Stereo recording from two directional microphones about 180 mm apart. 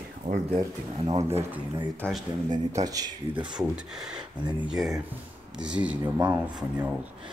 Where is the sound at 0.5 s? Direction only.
30° right (ahead or behind).